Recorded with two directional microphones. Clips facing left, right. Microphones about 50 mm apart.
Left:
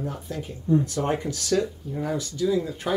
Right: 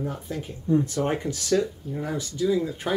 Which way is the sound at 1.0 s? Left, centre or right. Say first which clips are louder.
Even; centre.